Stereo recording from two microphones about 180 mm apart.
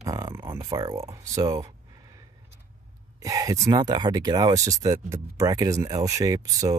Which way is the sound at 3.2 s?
20° right (ahead or behind).